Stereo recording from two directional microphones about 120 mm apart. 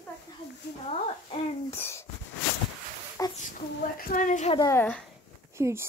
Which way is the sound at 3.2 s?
25° left (ahead or behind).